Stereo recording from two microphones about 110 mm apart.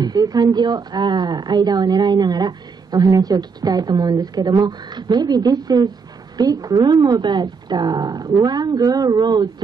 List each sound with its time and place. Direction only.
0.0 s a woman's voice: 35° right (ahead or behind)